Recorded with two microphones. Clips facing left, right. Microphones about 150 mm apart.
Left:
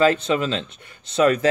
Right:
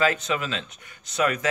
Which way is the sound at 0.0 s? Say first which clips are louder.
Left 6 dB; 30° left (ahead or behind).